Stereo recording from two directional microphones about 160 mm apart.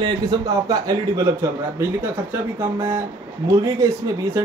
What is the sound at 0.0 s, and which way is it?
A man's voice, 25° right (ahead or behind).